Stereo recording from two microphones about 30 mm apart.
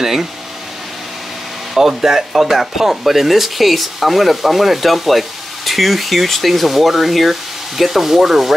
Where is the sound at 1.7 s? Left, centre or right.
Centre.